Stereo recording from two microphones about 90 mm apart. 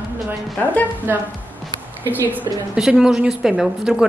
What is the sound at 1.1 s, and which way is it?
Speech, 25° right (ahead or behind).